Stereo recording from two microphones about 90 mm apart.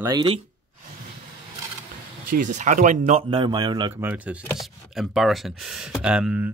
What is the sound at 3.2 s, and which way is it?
Speech, 65° right (ahead or behind).